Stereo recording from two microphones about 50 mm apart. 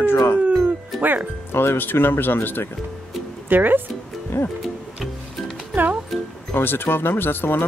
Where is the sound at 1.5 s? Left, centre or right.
Left.